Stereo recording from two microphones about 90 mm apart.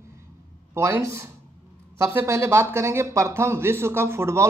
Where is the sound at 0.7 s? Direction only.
30° right (ahead or behind).